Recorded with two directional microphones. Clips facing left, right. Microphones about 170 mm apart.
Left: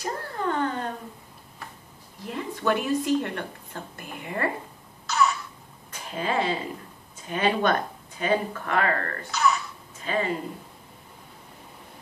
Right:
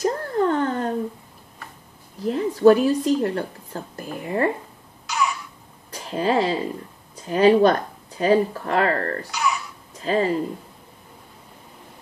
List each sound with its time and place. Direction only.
0.0 s a sound: 45° right (ahead or behind)
2.2 s a woman's voice: 35° right (ahead or behind)
5.0 s a sound: 10° right (ahead or behind)
5.9 s speech: 35° right (ahead or behind)
9.3 s throat clearing: 10° right (ahead or behind)
10.0 s speech: 35° right (ahead or behind)